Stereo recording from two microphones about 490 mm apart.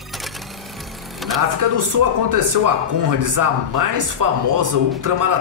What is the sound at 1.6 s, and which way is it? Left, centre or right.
Speech, right.